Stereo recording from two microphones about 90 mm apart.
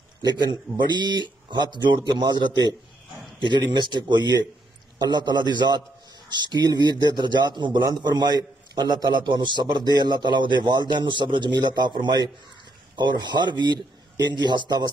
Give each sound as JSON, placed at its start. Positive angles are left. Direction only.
{"t": 0.9, "sound": "a man's voice", "side_deg": -55}